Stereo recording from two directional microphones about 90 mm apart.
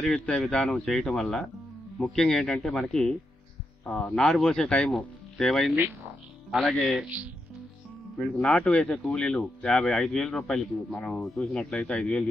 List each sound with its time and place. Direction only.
0.0 s speech: 5° left (ahead or behind)
7.1 s speech: 15° right (ahead or behind)
8.2 s speech: 10° left (ahead or behind)